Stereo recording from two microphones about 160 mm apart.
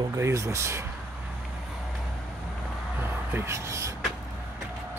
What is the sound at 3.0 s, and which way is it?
Speech, 15° right (ahead or behind).